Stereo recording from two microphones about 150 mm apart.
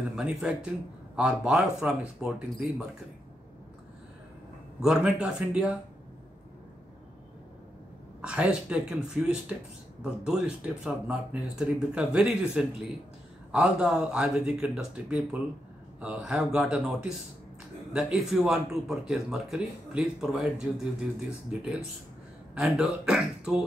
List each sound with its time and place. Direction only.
0.1 s speech: 5° right (ahead or behind)
4.8 s speech: 5° right (ahead or behind)
8.2 s speech: 5° right (ahead or behind)
17.9 s speech: centre (ahead or behind)